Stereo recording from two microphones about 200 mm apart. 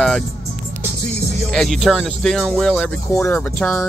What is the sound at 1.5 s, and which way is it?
Speech, centre (ahead or behind).